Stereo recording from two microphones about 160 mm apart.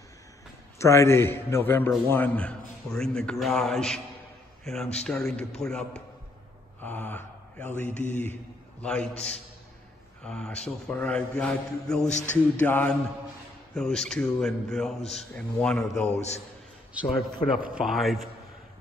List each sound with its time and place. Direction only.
0.7 s a man's voice: 20° left (ahead or behind)
6.8 s mantra: 10° left (ahead or behind)
8.8 s a man's voice: 5° left (ahead or behind)
12.1 s a man's voice: 45° left (ahead or behind)
12.5 s a man's voice: 10° left (ahead or behind)
15.0 s a man's voice: 40° left (ahead or behind)
15.3 s a man's voice: 5° left (ahead or behind)
16.1 s a man's voice: 45° left (ahead or behind)
17.0 s a man's voice: 30° left (ahead or behind)
17.6 s a man's voice: 5° right (ahead or behind)